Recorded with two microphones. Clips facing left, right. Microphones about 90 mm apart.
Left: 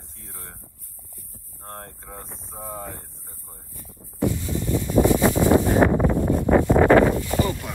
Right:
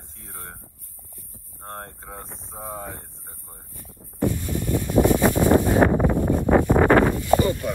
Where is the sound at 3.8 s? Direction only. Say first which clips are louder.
Even; 15° left (ahead or behind).